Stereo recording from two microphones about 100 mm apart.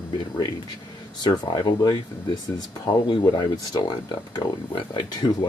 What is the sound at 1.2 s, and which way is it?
Speech, 45° left (ahead or behind).